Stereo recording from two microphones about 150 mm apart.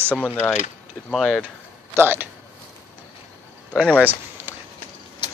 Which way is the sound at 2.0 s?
15° right (ahead or behind).